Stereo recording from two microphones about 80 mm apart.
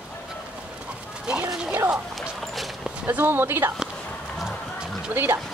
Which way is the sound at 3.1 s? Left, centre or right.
Right.